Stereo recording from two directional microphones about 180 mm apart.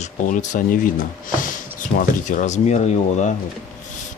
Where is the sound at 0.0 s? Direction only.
45° left (ahead or behind).